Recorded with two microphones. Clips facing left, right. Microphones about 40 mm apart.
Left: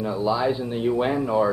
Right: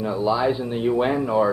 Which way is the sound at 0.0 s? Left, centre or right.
Centre.